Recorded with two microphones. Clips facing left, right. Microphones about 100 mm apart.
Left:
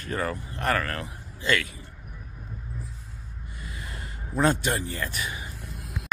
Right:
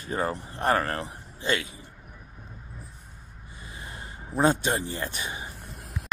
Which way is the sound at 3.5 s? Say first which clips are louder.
Left 1 dB; 20° right (ahead or behind).